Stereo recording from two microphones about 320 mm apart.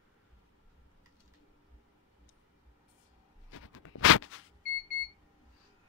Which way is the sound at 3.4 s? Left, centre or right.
Left.